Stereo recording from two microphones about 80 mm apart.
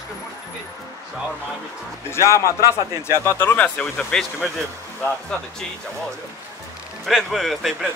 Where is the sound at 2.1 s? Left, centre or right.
Left.